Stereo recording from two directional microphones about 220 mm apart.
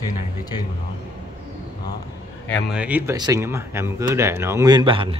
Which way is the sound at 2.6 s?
5° right (ahead or behind).